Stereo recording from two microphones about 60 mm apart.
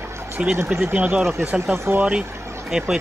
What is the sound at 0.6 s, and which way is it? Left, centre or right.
Speech, right.